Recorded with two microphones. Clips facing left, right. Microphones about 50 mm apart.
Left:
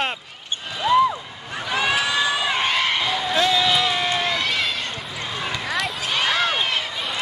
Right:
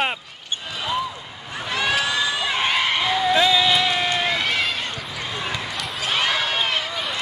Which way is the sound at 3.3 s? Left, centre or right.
Centre.